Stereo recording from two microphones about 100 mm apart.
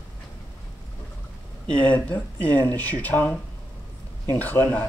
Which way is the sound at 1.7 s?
15° left (ahead or behind).